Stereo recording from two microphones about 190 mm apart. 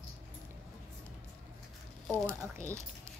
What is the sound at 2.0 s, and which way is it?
Speech, 10° left (ahead or behind).